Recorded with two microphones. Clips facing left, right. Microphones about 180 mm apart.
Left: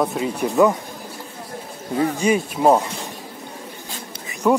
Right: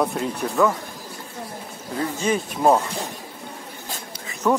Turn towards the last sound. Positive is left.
turn(degrees=10)  # may be behind; listen again after turning